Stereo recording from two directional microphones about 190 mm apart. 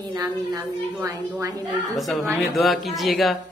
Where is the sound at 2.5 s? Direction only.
Centre (ahead or behind).